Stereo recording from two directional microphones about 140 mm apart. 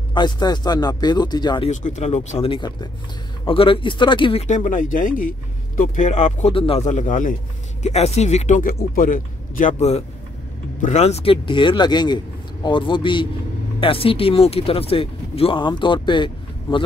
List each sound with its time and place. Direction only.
0.1 s speech: 30° left (ahead or behind)
1.7 s speech: 60° left (ahead or behind)
2.4 s speech: 35° left (ahead or behind)
4.5 s speech: 65° left (ahead or behind)
5.8 s speech: 60° left (ahead or behind)
6.5 s speech: 40° left (ahead or behind)
6.9 s speech: 65° left (ahead or behind)
7.8 s speech: 50° left (ahead or behind); by 16.3 s 35° left (ahead or behind)